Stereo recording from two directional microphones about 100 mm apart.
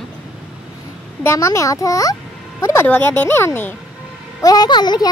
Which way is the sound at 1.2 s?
25° left (ahead or behind).